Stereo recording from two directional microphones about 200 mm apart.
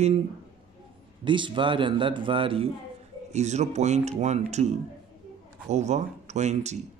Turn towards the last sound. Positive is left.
turn(degrees=-35)  # may be behind; listen again after turning